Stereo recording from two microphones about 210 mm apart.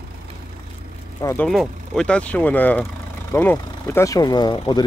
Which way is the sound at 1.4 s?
Centre (ahead or behind).